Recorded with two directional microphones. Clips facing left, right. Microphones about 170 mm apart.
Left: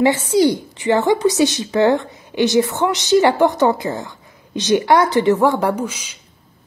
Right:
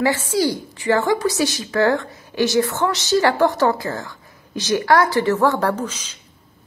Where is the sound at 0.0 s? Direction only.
20° left (ahead or behind).